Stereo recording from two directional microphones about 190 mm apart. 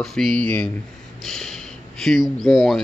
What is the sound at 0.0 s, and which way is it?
Speech, centre (ahead or behind).